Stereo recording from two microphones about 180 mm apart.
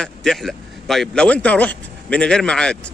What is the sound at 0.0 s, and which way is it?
A man's voice, centre (ahead or behind).